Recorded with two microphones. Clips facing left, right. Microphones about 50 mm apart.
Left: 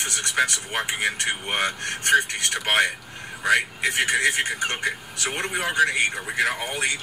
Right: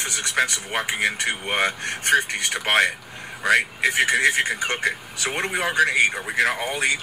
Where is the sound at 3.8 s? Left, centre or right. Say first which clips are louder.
Right 2 dB; centre.